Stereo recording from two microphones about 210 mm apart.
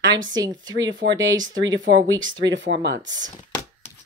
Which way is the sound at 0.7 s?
65° right (ahead or behind).